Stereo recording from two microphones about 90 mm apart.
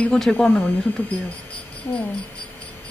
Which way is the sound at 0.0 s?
10° left (ahead or behind).